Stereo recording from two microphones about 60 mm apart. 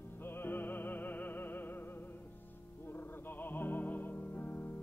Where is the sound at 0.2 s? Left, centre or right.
Left.